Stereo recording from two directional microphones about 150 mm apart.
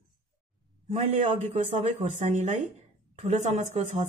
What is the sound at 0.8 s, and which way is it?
Speech, 50° right (ahead or behind).